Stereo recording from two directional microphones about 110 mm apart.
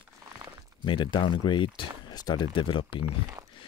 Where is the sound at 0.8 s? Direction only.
45° left (ahead or behind).